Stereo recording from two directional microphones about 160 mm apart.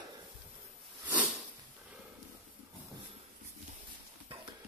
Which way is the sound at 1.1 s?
5° right (ahead or behind).